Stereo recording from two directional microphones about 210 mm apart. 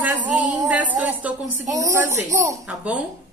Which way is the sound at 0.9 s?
5° right (ahead or behind).